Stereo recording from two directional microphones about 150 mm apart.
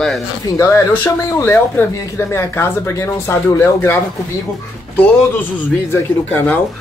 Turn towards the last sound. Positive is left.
turn(degrees=15)  # may be behind; listen again after turning